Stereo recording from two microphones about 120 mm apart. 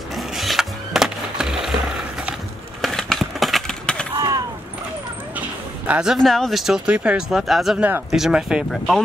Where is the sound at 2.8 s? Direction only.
5° left (ahead or behind).